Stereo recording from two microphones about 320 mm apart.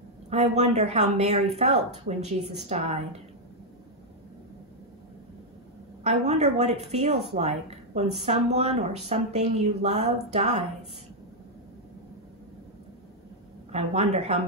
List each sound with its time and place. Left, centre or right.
0.3 s speech: centre
6.0 s speech: right
13.7 s speech: centre